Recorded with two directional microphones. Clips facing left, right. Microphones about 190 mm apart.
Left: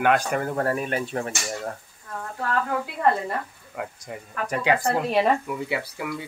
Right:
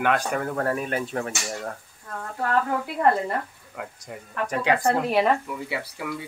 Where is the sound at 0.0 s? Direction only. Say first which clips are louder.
Left 2 dB; 5° left (ahead or behind).